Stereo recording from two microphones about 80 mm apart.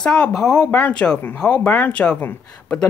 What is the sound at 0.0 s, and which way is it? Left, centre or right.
Speech, centre.